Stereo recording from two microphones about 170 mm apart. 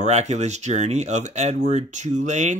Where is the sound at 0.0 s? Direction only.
45° right (ahead or behind).